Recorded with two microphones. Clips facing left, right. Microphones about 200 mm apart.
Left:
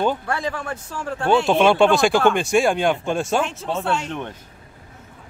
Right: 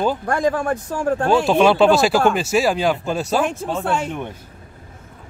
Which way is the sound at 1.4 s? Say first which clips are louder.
Right 2 dB; centre (ahead or behind).